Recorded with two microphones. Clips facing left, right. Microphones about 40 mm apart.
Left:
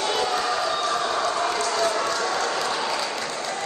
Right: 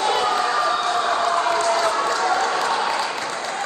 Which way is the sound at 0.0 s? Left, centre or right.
Right.